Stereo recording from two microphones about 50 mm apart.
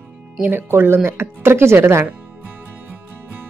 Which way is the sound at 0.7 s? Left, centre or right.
Right.